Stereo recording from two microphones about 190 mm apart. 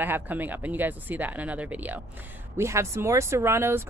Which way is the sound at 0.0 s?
10° right (ahead or behind).